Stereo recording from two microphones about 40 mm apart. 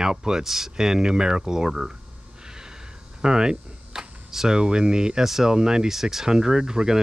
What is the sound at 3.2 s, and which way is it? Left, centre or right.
Speech, centre.